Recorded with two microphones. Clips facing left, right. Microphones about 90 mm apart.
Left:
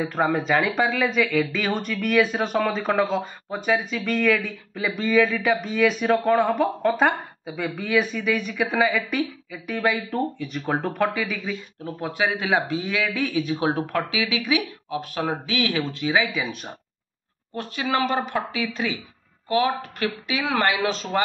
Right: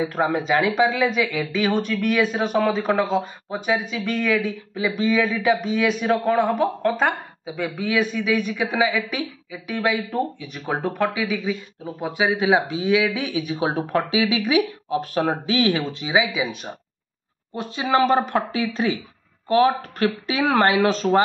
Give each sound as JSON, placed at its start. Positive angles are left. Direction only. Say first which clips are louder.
{"t": 0.0, "sound": "speech", "louder": "right 1 dB", "side_deg": 0}
{"t": 13.9, "sound": "speech", "louder": "right 4 dB", "side_deg": -35}
{"t": 17.8, "sound": "speech", "louder": "right 5 dB", "side_deg": -35}